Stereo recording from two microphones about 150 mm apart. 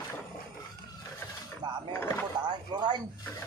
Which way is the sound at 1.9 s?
15° left (ahead or behind).